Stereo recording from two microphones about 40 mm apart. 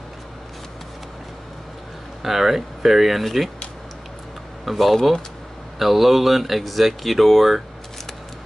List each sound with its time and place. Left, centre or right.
2.2 s speech: centre
4.6 s speech: centre